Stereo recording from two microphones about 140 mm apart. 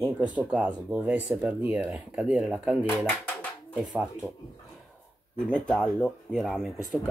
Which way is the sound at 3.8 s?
Centre (ahead or behind).